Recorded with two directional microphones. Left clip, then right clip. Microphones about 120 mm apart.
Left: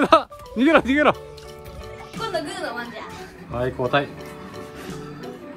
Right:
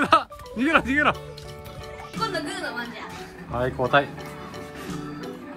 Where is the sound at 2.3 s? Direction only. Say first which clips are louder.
Left 2 dB; 15° left (ahead or behind).